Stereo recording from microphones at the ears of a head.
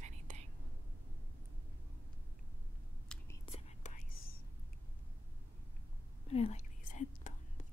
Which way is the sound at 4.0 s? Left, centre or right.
Left.